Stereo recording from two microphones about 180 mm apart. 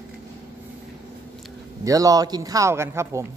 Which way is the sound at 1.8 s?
20° right (ahead or behind).